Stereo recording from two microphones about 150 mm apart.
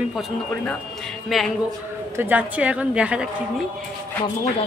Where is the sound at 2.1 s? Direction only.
10° right (ahead or behind).